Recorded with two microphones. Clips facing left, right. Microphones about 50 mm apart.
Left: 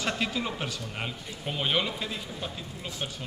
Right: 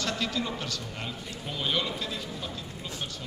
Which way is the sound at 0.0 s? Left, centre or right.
Centre.